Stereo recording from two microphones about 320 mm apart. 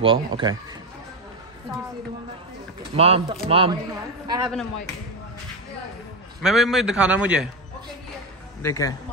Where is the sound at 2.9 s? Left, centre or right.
Centre.